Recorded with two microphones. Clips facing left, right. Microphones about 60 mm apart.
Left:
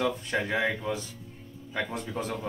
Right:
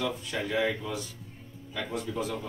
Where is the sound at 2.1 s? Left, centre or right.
Left.